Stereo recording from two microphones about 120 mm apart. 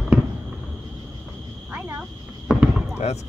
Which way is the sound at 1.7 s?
15° right (ahead or behind).